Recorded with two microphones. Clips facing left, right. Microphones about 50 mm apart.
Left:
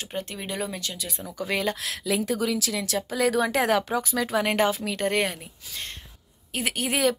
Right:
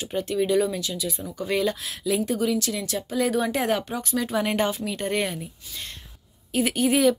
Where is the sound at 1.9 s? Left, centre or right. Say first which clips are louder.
Right 1 dB; left.